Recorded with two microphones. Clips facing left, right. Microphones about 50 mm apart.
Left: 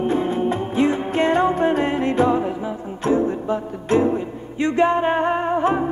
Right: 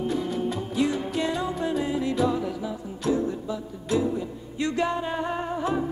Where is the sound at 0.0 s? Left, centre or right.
Left.